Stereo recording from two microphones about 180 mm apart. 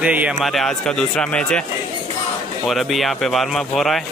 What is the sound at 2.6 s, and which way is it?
A man's voice, centre (ahead or behind).